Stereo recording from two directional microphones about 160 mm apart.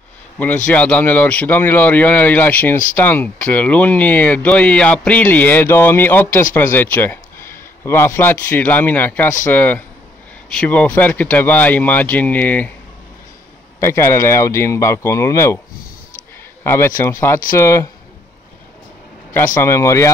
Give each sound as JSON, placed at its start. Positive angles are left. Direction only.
{"t": 0.7, "sound": "speech", "side_deg": 10}
{"t": 13.7, "sound": "speech", "side_deg": 15}
{"t": 16.6, "sound": "a man's voice", "side_deg": 15}
{"t": 19.6, "sound": "speech", "side_deg": 20}